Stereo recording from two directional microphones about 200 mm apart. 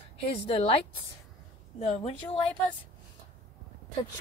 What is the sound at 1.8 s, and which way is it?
Speech, 30° left (ahead or behind).